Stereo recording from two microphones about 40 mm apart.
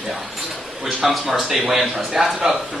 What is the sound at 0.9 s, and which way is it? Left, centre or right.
A man's voice, centre.